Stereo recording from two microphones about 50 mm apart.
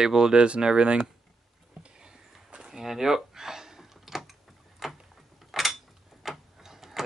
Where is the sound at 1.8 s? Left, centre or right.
Centre.